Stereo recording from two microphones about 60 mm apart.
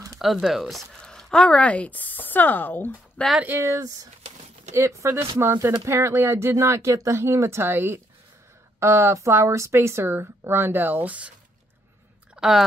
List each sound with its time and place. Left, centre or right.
0.2 s speech: centre
1.0 s speech: centre; by 2.9 s left
3.2 s speech: left
3.6 s speech: right
4.7 s speech: right
8.7 s speech: right
12.4 s speech: centre